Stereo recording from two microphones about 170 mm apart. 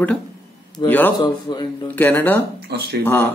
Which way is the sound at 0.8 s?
10° left (ahead or behind).